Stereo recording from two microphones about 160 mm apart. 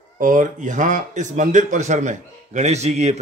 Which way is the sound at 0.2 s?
55° right (ahead or behind).